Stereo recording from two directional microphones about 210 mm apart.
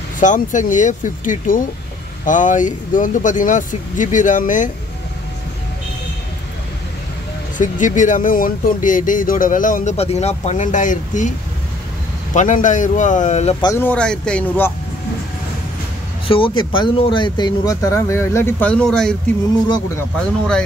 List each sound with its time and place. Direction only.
0.2 s speech: 35° left (ahead or behind)
7.5 s speech: 40° left (ahead or behind)
12.4 s speech: 35° left (ahead or behind)
13.7 s speech: 10° left (ahead or behind)
16.3 s speech: 25° left (ahead or behind); by 19.1 s 5° left (ahead or behind)